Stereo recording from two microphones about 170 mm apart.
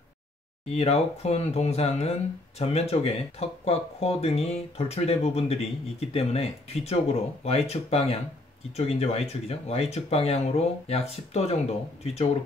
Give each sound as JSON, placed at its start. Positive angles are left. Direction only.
{"t": 0.7, "sound": "speech", "side_deg": 40}